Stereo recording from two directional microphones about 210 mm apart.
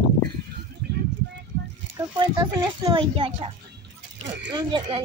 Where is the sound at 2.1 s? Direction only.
20° right (ahead or behind).